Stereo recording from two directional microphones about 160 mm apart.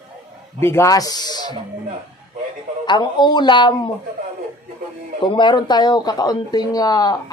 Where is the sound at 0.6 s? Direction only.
15° left (ahead or behind).